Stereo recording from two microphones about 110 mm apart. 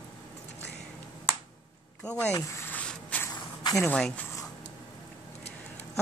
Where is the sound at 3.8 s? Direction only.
5° left (ahead or behind).